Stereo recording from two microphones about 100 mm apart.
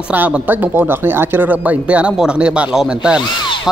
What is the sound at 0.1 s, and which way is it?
Speech, 15° right (ahead or behind).